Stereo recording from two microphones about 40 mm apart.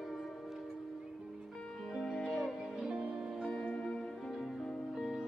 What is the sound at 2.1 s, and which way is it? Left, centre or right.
Music, centre.